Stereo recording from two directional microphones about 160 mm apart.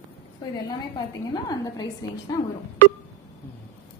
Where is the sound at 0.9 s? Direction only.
25° left (ahead or behind).